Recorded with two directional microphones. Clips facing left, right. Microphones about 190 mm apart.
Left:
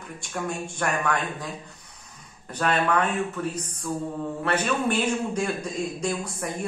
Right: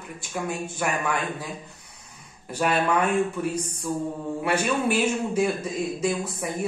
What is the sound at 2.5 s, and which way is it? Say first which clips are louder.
A man's voice: right 1 dB; 10° right (ahead or behind).